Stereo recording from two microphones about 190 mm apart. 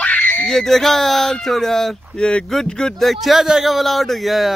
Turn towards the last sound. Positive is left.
turn(degrees=0)  # may be behind; listen again after turning